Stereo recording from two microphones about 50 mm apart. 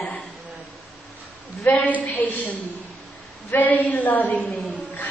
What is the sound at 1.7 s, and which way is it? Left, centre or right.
Speech, left.